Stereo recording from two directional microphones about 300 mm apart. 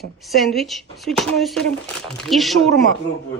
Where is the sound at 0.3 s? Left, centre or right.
Centre.